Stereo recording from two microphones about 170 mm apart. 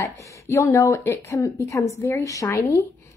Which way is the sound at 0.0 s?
20° left (ahead or behind).